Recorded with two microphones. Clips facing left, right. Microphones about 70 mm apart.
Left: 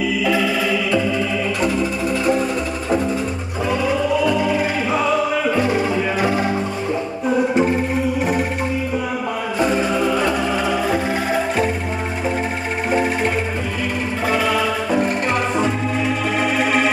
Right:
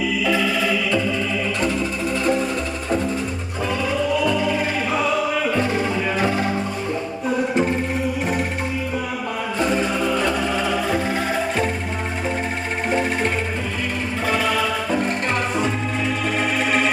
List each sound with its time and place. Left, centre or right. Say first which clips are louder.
0.2 s music: left 2 dB; centre
4.2 s music: left 3 dB; centre
9.6 s music: left 3 dB; centre
14.3 s music: left 2 dB; centre